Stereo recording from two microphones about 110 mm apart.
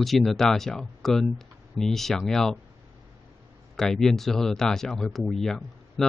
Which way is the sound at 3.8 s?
5° left (ahead or behind).